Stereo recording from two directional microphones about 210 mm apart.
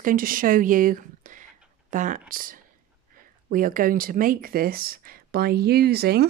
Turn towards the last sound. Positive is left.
turn(degrees=-50)  # may be behind; listen again after turning